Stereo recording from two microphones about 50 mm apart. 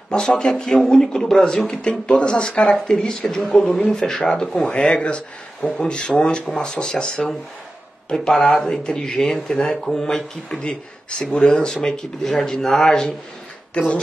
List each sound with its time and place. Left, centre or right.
0.1 s speech: centre